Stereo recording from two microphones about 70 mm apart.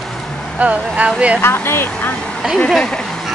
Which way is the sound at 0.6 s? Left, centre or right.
Centre.